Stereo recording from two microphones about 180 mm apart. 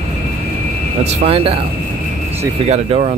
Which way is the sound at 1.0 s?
35° right (ahead or behind).